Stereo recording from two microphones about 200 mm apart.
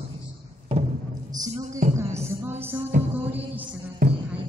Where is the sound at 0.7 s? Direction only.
25° right (ahead or behind).